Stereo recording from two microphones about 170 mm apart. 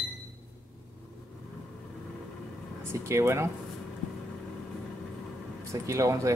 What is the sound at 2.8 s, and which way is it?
Speech, 15° right (ahead or behind).